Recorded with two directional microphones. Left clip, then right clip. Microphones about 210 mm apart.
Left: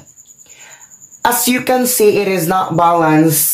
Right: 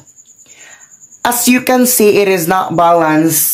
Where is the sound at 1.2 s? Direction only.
15° right (ahead or behind).